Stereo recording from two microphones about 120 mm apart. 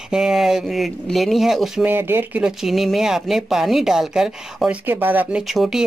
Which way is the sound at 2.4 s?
5° right (ahead or behind).